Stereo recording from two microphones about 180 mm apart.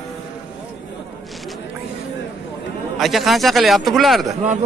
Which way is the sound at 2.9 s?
Centre (ahead or behind).